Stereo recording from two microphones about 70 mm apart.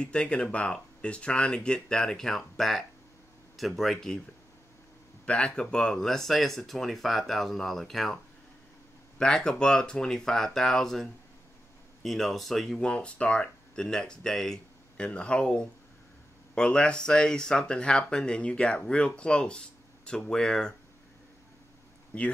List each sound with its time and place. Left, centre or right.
0.0 s speech: centre
5.2 s speech: centre
9.2 s speech: centre
22.1 s speech: centre